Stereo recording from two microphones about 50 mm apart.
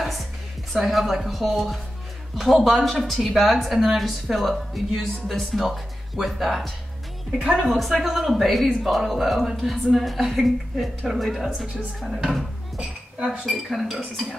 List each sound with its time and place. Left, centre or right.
0.0 s music: centre
0.7 s speech: centre
7.7 s speech: centre
11.4 s a woman's voice: centre
12.0 s speech: centre
12.7 s speech: right
13.5 s speech: centre